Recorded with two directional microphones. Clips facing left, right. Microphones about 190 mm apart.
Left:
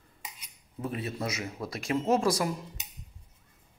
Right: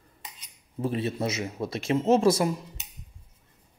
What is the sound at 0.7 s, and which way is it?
Speech, 30° right (ahead or behind).